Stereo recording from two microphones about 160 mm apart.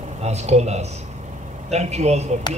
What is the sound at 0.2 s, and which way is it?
Speech, 45° right (ahead or behind).